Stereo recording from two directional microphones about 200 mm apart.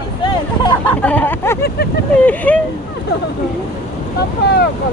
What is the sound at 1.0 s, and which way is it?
Speech, 10° left (ahead or behind).